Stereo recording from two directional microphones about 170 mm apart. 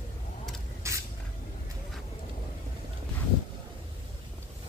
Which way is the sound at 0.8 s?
15° right (ahead or behind).